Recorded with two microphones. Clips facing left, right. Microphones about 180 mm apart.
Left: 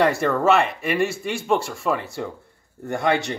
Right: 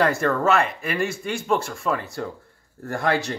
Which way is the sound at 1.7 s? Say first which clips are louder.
Left 1 dB; 5° left (ahead or behind).